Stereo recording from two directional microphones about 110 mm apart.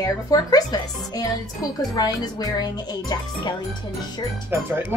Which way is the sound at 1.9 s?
35° left (ahead or behind).